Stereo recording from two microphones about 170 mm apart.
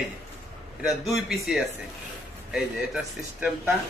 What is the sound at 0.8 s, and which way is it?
A man's voice, centre (ahead or behind).